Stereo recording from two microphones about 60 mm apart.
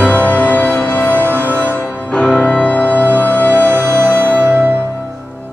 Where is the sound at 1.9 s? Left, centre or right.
Centre.